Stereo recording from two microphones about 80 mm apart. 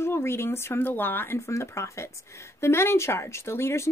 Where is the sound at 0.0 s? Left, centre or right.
Left.